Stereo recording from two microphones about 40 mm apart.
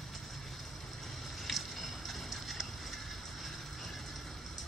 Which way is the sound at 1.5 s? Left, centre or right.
Centre.